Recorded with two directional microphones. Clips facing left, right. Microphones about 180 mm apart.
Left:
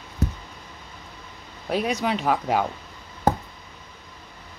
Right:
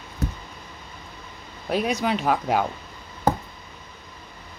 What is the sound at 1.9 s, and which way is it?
Speech, 5° right (ahead or behind).